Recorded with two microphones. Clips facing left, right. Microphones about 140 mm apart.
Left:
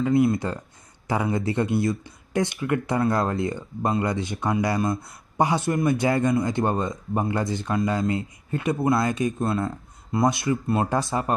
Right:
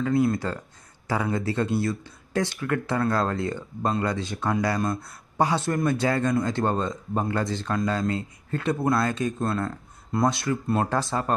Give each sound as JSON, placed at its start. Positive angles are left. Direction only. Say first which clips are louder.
{"t": 0.4, "sound": "speech", "louder": "left 1 dB", "side_deg": 20}